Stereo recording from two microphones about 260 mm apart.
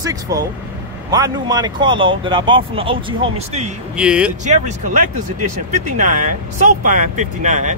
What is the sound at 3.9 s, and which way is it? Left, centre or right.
Speech, centre.